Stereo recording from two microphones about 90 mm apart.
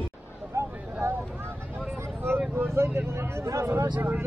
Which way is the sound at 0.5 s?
35° right (ahead or behind).